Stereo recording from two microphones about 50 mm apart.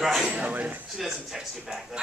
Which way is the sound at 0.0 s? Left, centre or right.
Centre.